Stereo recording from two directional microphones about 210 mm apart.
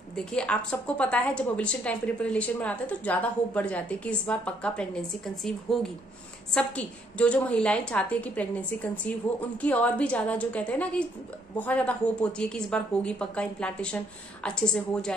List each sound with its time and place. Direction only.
0.1 s a woman's voice: 5° left (ahead or behind)